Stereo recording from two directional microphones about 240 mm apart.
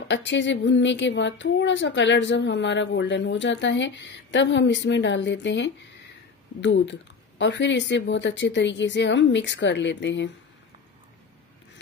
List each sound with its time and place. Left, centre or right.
0.1 s speech: left